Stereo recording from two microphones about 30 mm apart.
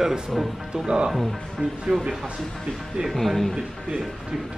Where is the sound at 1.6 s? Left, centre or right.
Right.